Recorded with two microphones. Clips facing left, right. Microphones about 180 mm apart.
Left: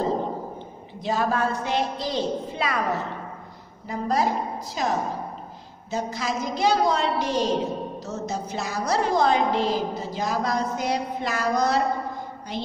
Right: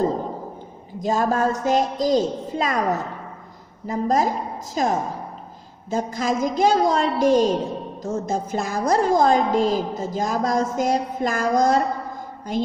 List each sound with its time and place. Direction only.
0.9 s a woman's voice: 45° right (ahead or behind)